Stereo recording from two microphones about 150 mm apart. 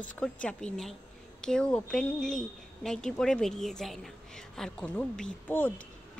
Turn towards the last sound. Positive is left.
turn(degrees=10)  # may be behind; listen again after turning